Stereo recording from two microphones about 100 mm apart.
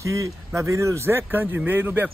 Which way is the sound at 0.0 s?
30° right (ahead or behind).